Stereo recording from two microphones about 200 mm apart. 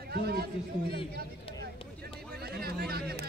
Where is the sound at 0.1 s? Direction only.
50° right (ahead or behind).